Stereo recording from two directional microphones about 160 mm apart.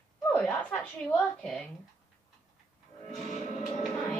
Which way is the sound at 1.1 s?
5° left (ahead or behind).